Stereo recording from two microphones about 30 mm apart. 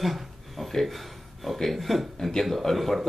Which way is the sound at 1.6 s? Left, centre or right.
Centre.